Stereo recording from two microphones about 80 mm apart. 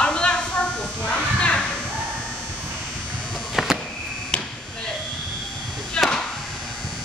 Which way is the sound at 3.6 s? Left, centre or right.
Centre.